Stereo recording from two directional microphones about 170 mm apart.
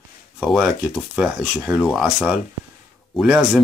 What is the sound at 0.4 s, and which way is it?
Speech, centre (ahead or behind).